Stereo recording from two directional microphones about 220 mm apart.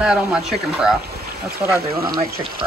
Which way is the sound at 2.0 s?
20° right (ahead or behind).